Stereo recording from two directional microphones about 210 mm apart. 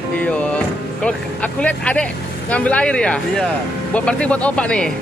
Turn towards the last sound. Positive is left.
turn(degrees=5)  # may be behind; listen again after turning